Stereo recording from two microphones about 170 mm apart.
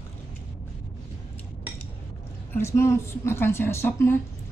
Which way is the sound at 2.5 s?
15° left (ahead or behind).